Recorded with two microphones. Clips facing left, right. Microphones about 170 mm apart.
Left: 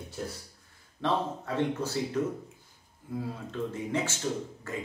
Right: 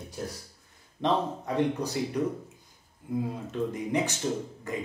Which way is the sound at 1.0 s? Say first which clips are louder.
Right 2 dB; 15° right (ahead or behind).